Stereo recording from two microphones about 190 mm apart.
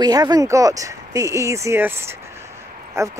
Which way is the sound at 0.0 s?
20° right (ahead or behind).